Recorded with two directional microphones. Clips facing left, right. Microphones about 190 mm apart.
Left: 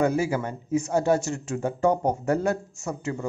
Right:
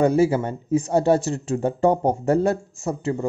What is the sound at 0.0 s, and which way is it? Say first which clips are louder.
A man's voice: right 5 dB; 30° right (ahead or behind).